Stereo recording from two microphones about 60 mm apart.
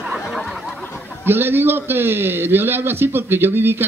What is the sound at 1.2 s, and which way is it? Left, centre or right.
Speech, right.